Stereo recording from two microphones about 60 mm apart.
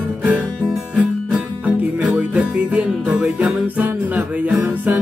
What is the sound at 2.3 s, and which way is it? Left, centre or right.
Music, right.